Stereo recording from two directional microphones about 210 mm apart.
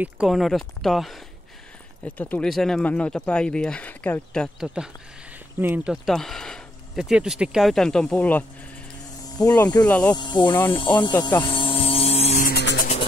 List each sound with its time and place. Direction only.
0.0 s speech: centre (ahead or behind)
9.5 s speech: 15° left (ahead or behind)
10.1 s speech: 20° left (ahead or behind)
11.4 s electric shaver: 25° left (ahead or behind); by 12.7 s 45° left (ahead or behind)